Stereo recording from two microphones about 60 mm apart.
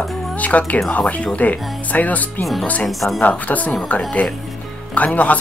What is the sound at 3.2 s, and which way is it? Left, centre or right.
Speech, left.